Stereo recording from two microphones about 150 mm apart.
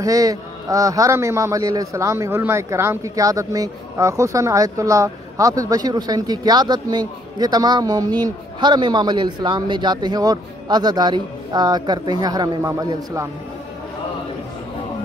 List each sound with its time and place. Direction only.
0.0 s a man's voice: 25° right (ahead or behind)